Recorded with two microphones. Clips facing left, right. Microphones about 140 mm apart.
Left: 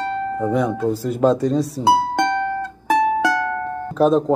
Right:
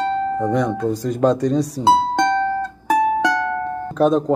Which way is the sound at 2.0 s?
20° right (ahead or behind).